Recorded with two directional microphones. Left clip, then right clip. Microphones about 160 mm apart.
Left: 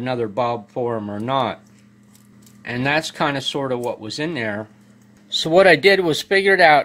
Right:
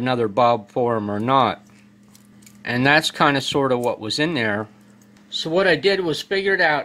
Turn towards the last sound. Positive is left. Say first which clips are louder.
# left 6 dB
turn(degrees=40)  # may be behind; listen again after turning